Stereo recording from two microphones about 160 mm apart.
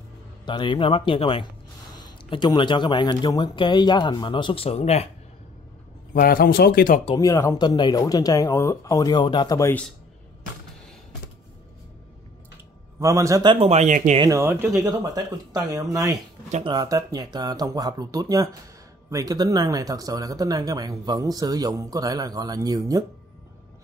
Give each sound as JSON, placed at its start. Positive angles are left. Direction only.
{"t": 0.5, "sound": "speech", "side_deg": 30}
{"t": 6.1, "sound": "speech", "side_deg": 65}
{"t": 7.2, "sound": "speech", "side_deg": 20}
{"t": 13.0, "sound": "speech", "side_deg": -20}
{"t": 13.5, "sound": "speech", "side_deg": -40}
{"t": 14.2, "sound": "speech", "side_deg": -20}